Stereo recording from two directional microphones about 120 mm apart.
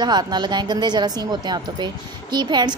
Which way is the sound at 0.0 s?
35° right (ahead or behind).